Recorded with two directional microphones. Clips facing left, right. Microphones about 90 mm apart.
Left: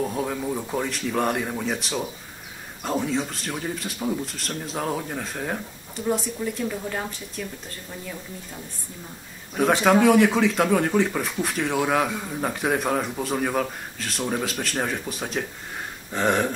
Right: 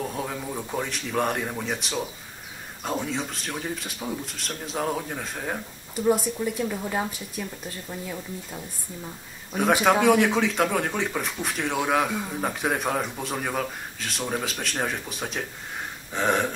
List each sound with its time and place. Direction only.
0.1 s speech: centre (ahead or behind)
9.5 s speech: 5° right (ahead or behind)